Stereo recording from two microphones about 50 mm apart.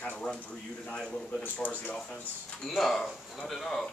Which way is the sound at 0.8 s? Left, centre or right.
Centre.